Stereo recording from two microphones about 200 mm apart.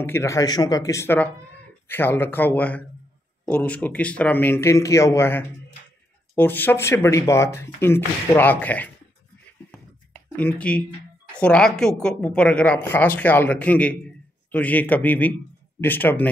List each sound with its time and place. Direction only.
0.0 s speech: 15° left (ahead or behind)
10.3 s a woman's voice: 5° left (ahead or behind)